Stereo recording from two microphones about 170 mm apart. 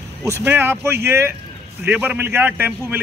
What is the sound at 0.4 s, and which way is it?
A man's voice, 10° right (ahead or behind).